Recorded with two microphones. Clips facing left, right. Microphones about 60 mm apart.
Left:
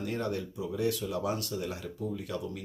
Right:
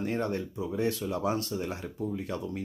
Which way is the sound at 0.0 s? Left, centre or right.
Right.